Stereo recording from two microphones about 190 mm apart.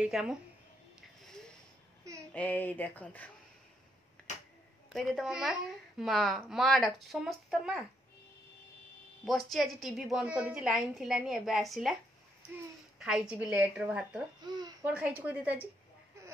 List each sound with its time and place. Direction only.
0.0 s a woman's voice: 5° right (ahead or behind)
2.3 s speech: 10° left (ahead or behind)
4.9 s a woman's voice: centre (ahead or behind)
9.2 s a woman's voice: centre (ahead or behind)
13.0 s a woman's voice: 5° right (ahead or behind)
14.4 s a sound: 20° right (ahead or behind)
14.9 s a woman's voice: 5° right (ahead or behind)